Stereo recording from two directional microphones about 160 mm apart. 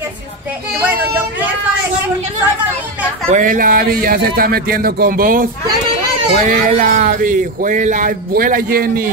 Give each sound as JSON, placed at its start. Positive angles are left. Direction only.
{"t": 3.3, "sound": "speech", "side_deg": -55}